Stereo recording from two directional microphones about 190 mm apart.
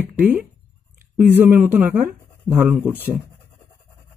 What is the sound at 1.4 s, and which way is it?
A man's voice, 10° right (ahead or behind).